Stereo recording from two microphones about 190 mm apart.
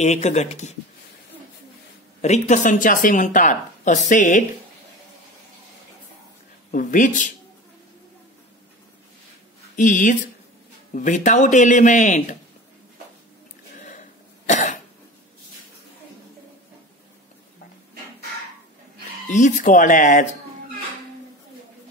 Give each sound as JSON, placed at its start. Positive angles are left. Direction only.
{"t": 0.0, "sound": "speech", "side_deg": 35}
{"t": 2.2, "sound": "speech", "side_deg": 40}
{"t": 6.7, "sound": "speech", "side_deg": 45}
{"t": 9.8, "sound": "speech", "side_deg": 40}
{"t": 13.7, "sound": "cough", "side_deg": 40}
{"t": 19.2, "sound": "speech", "side_deg": 40}